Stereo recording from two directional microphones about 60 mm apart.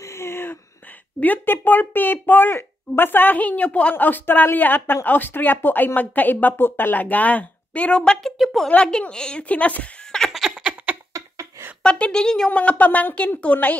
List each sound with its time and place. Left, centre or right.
0.0 s a sound: left
1.2 s a woman's voice: left
3.9 s a woman's voice: left; by 8.3 s centre
8.4 s a woman's voice: centre
9.1 s a woman's voice: centre
10.5 s a sound: centre
11.1 s a sound: right
11.8 s a woman's voice: centre
12.4 s a woman's voice: left